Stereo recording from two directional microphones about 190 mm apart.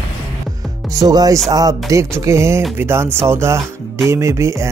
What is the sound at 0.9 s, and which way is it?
Speech, 20° right (ahead or behind).